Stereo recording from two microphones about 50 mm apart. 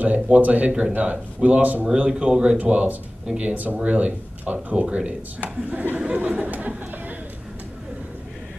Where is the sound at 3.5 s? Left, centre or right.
Right.